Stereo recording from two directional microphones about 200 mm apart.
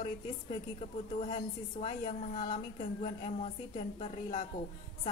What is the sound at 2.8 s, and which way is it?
A woman's voice, 30° left (ahead or behind).